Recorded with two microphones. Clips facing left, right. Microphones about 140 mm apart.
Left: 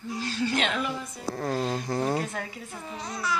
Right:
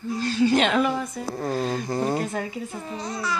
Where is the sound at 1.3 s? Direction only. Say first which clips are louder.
Right 2 dB; 5° right (ahead or behind).